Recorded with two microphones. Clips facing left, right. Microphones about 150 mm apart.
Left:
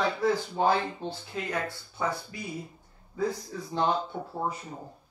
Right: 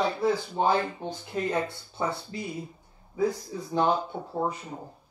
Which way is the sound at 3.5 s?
10° right (ahead or behind).